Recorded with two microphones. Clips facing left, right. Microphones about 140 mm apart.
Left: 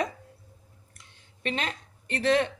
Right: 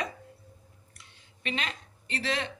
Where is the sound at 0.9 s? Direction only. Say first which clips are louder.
Even; 45° left (ahead or behind).